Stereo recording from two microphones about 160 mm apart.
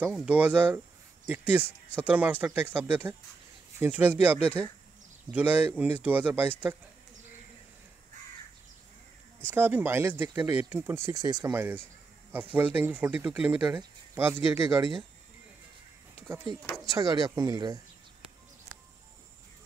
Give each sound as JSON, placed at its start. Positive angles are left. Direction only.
{"t": 0.0, "sound": "speech", "side_deg": -5}
{"t": 9.5, "sound": "speech", "side_deg": -10}
{"t": 16.3, "sound": "speech", "side_deg": -15}